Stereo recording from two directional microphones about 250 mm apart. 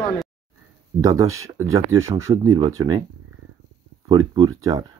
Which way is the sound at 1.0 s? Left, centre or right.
Centre.